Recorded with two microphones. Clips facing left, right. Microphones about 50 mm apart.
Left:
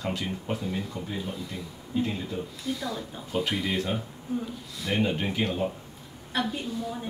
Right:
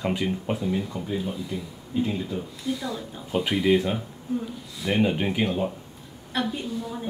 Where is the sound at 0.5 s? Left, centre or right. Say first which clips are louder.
Right 4 dB; centre.